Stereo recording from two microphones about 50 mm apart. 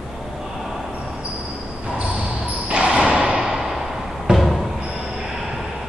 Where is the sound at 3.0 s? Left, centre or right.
Centre.